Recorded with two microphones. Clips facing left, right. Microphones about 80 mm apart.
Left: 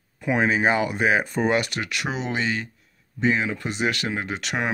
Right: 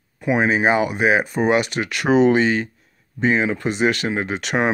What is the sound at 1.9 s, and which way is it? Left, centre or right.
Speech, right.